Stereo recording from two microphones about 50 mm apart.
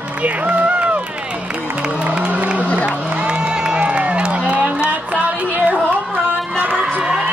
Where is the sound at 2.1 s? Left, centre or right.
Right.